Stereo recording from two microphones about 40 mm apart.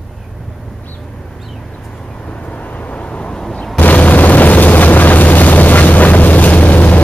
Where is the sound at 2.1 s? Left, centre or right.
Left.